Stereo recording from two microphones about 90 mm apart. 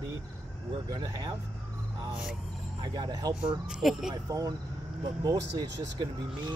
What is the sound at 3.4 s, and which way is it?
Speech, 10° right (ahead or behind).